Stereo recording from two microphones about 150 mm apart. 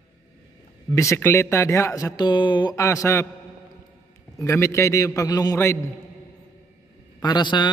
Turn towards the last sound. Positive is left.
turn(degrees=30)  # may be behind; listen again after turning